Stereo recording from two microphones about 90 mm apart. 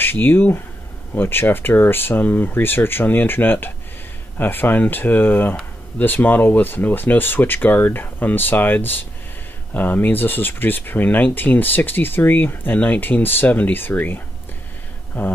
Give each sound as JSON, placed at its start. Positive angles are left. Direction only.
{"t": 0.0, "sound": "speech", "side_deg": 25}